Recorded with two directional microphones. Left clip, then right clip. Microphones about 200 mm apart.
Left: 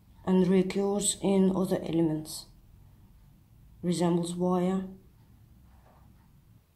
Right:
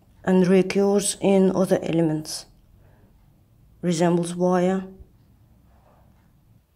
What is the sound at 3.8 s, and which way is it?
Speech, 25° right (ahead or behind).